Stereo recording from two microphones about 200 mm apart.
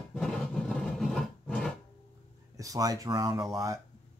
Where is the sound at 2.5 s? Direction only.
15° right (ahead or behind).